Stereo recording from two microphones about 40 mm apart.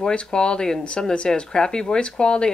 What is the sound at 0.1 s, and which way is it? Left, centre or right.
Speech, left.